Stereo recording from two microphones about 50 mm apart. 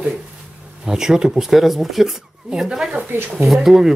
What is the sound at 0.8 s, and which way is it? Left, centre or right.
Speech, centre.